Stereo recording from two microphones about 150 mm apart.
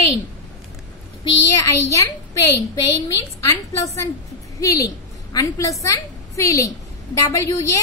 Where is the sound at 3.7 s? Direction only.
20° left (ahead or behind).